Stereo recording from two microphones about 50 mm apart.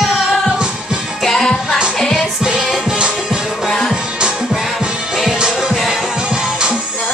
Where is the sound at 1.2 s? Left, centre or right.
Centre.